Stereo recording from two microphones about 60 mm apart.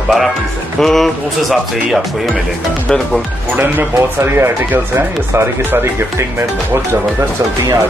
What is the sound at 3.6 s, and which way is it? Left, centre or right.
Speech, right.